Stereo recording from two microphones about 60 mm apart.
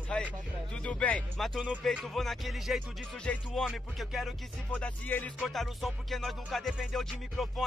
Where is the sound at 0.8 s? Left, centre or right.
Left.